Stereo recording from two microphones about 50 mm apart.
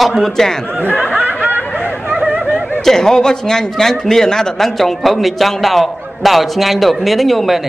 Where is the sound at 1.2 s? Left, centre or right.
Right.